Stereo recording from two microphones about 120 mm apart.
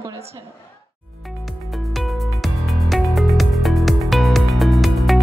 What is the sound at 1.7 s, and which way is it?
Music, centre (ahead or behind).